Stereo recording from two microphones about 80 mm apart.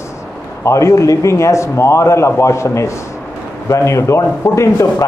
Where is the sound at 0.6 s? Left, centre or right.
Left.